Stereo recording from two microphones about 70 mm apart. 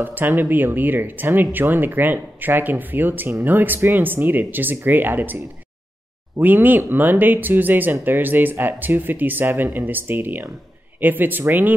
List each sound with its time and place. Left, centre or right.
0.0 s speech: right
6.4 s speech: right